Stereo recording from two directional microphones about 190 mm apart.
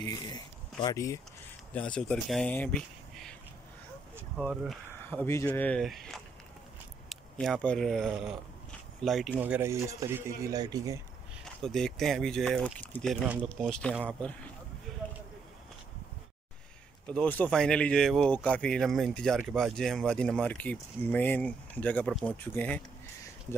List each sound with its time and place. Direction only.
0.8 s speech: 15° left (ahead or behind)
2.0 s speech: 5° left (ahead or behind)
4.4 s speech: centre (ahead or behind)
5.2 s a man's voice: 15° left (ahead or behind); by 11.0 s 20° right (ahead or behind)
11.4 s speech: 5° left (ahead or behind)
14.9 s a sound: 5° left (ahead or behind)
17.1 s speech: 5° left (ahead or behind)